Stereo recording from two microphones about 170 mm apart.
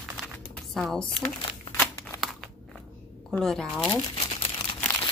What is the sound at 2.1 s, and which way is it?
Crumpling, centre (ahead or behind).